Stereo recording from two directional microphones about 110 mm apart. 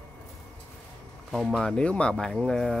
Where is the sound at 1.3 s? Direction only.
5° left (ahead or behind).